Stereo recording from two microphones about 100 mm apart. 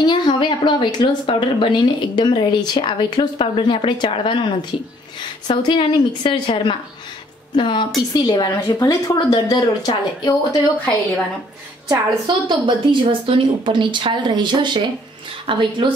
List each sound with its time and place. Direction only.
0.0 s speech: 50° left (ahead or behind)
5.6 s speech: 50° left (ahead or behind)
12.4 s a woman's voice: 50° right (ahead or behind)